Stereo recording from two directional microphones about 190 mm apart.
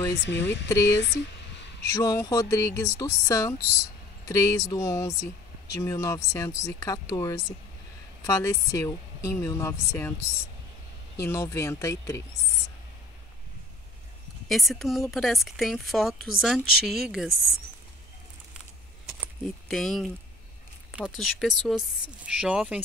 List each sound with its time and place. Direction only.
0.2 s speech: 65° left (ahead or behind)
1.9 s speech: 15° left (ahead or behind)
14.5 s a woman's voice: centre (ahead or behind)
19.0 s a sound: centre (ahead or behind)
20.9 s a woman's voice: 5° right (ahead or behind)